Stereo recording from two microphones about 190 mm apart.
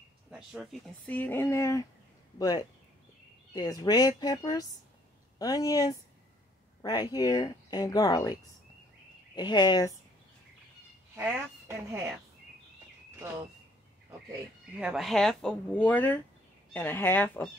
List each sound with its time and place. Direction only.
0.3 s speech: centre (ahead or behind); by 9.9 s 20° left (ahead or behind)
11.1 s speech: 10° right (ahead or behind)
14.8 s speech: 5° right (ahead or behind)